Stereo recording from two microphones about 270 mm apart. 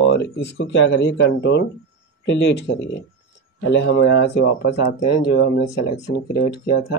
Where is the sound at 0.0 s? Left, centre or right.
Left.